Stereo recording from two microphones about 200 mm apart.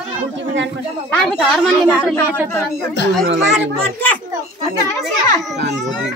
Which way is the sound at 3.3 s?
65° right (ahead or behind).